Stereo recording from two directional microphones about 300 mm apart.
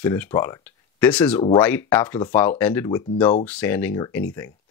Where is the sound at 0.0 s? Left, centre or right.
Centre.